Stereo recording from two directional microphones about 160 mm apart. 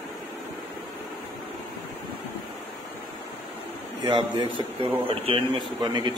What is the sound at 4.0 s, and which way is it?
A man's voice, 30° right (ahead or behind).